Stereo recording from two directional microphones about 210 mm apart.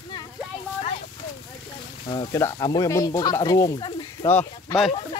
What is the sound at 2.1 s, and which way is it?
Speech, 15° left (ahead or behind).